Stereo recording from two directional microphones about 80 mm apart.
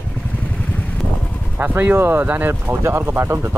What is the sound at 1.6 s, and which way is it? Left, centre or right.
Speech, right.